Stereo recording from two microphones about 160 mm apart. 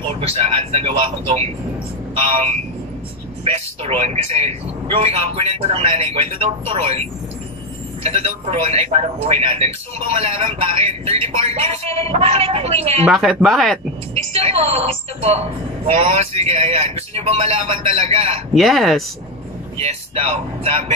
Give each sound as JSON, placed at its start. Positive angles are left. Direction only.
{"t": 0.2, "sound": "speech", "side_deg": -40}
{"t": 3.4, "sound": "speech", "side_deg": -40}
{"t": 13.1, "sound": "speech", "side_deg": 0}
{"t": 14.3, "sound": "speech", "side_deg": -40}
{"t": 18.5, "sound": "speech", "side_deg": 0}
{"t": 19.8, "sound": "speech", "side_deg": -40}